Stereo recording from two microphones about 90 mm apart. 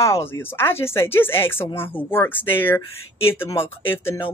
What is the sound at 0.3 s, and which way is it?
Speech, 25° left (ahead or behind).